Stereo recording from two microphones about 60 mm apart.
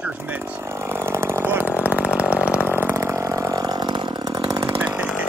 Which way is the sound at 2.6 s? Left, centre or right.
Right.